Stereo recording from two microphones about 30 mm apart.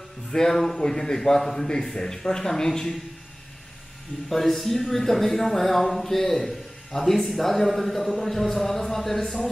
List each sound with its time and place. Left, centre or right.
0.3 s a man's voice: centre
4.3 s speech: centre